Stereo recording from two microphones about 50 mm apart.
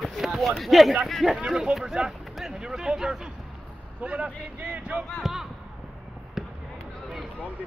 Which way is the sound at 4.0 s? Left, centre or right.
Right.